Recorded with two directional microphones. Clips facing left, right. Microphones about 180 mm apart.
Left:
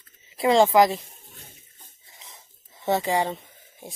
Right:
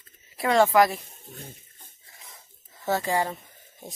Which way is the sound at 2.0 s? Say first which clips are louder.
Left 1 dB; 20° left (ahead or behind).